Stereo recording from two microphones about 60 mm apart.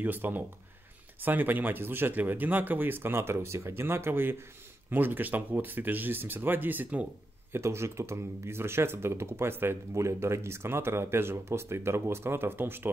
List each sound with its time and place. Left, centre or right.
0.0 s speech: right
7.5 s speech: right
9.9 s speech: right